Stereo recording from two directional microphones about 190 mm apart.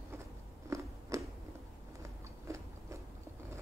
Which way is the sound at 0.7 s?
15° right (ahead or behind).